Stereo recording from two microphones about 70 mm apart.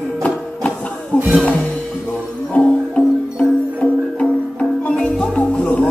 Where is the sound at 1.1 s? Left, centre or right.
Centre.